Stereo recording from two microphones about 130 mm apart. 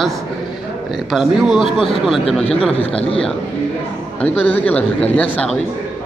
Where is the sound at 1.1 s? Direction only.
Centre (ahead or behind).